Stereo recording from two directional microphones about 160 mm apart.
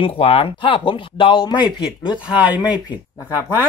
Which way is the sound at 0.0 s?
35° left (ahead or behind).